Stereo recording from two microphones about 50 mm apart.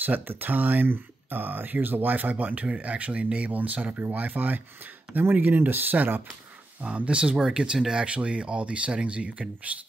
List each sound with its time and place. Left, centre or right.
0.0 s speech: right
6.8 s speech: right